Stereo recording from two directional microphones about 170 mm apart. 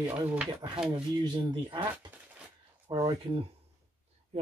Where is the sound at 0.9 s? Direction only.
25° right (ahead or behind).